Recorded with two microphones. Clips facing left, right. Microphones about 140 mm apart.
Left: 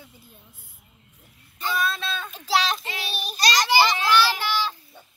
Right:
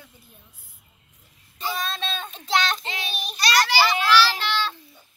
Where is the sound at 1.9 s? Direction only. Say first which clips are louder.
Even; 30° right (ahead or behind).